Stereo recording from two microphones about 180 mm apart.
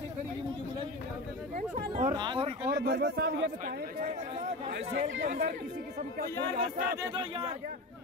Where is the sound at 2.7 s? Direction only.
60° right (ahead or behind).